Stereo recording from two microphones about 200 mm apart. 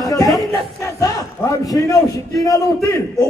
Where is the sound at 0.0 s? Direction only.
15° left (ahead or behind).